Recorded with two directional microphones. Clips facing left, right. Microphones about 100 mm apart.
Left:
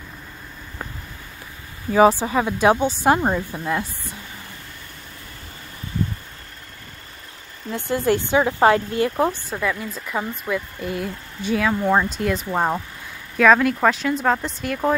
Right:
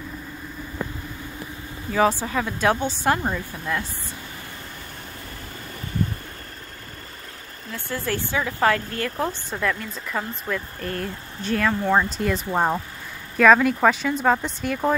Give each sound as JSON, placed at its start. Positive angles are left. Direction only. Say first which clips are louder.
{"t": 2.0, "sound": "speech", "louder": "left 5 dB", "side_deg": 15}
{"t": 3.2, "sound": "speech", "louder": "left 5 dB", "side_deg": 30}
{"t": 7.7, "sound": "speech", "louder": "left 7 dB", "side_deg": 20}
{"t": 9.3, "sound": "speech", "louder": "left 1 dB", "side_deg": 5}